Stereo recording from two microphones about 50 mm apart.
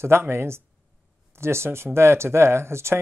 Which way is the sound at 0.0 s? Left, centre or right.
Right.